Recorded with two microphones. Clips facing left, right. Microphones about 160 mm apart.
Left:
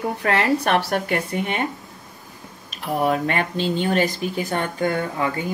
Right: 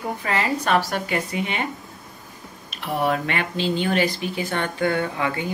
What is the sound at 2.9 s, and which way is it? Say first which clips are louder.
Speech: left 2 dB; 40° left (ahead or behind).